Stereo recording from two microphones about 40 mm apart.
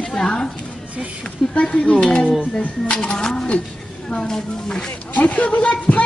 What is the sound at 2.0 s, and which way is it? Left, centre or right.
Speech, left.